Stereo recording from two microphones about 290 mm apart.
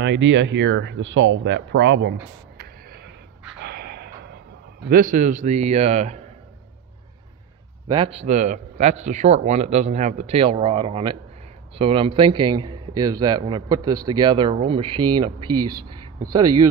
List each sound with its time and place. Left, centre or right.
0.0 s speech: right
3.6 s a sound: right
4.8 s speech: right
7.9 s a man's voice: centre